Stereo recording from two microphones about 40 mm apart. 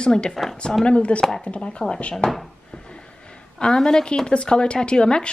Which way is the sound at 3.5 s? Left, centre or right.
Centre.